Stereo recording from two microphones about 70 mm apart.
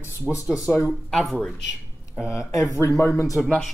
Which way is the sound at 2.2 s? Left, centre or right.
Left.